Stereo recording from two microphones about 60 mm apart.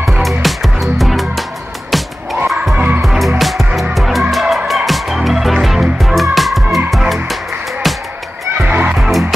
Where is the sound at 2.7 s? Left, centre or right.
Right.